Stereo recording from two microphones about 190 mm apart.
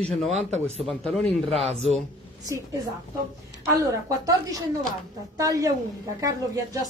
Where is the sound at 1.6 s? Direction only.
35° right (ahead or behind).